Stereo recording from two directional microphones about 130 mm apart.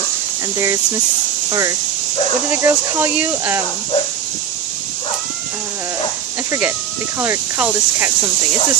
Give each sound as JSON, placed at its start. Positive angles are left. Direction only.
{"t": 1.5, "sound": "speech", "side_deg": -25}
{"t": 7.2, "sound": "speech", "side_deg": -15}